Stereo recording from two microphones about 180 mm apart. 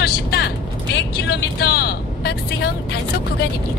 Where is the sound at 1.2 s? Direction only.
60° left (ahead or behind).